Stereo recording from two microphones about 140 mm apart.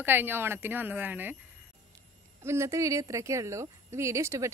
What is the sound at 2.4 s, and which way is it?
Speech, 20° right (ahead or behind).